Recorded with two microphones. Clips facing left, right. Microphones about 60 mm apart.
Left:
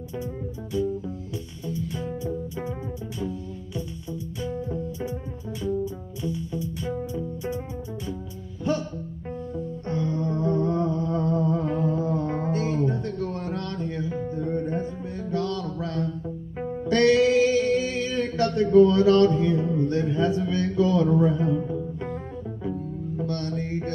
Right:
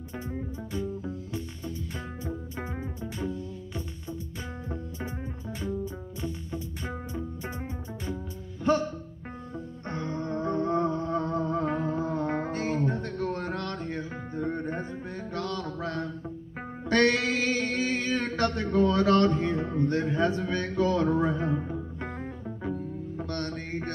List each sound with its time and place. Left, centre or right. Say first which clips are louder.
4.4 s music: left 7 dB; right
6.2 s music: left 7 dB; right
9.8 s music: left 5 dB; right
15.3 s mantra: left 5 dB; right
16.6 s music: left 4 dB; right